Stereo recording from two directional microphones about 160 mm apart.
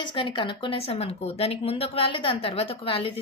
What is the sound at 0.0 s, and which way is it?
A woman's voice, 30° left (ahead or behind).